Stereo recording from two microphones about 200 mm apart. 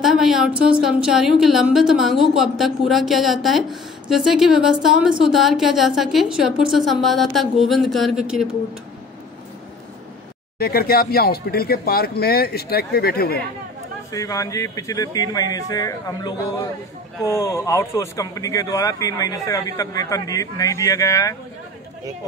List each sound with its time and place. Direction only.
0.0 s a woman's voice: centre (ahead or behind)
10.6 s speech: 50° left (ahead or behind)
14.1 s speech: 15° left (ahead or behind)